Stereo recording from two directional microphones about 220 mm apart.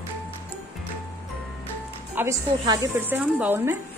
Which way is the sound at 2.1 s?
10° right (ahead or behind).